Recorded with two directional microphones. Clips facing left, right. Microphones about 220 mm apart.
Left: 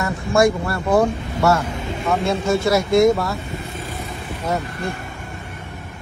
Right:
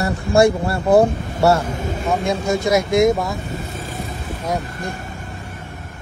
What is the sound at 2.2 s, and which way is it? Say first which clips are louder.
Speech: left 1 dB; 15° right (ahead or behind).